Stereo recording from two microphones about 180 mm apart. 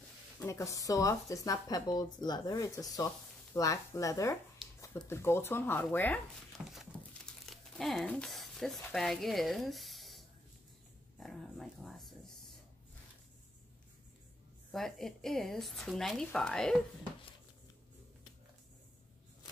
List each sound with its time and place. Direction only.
0.4 s speech: 15° left (ahead or behind)
7.4 s speech: centre (ahead or behind)
11.1 s a sound: centre (ahead or behind)
14.7 s speech: centre (ahead or behind)